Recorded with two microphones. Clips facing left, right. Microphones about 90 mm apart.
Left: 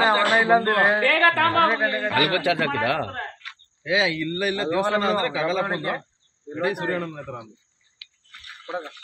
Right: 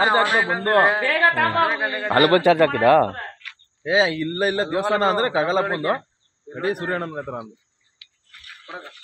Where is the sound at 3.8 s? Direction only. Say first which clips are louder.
Right 3 dB; 35° right (ahead or behind).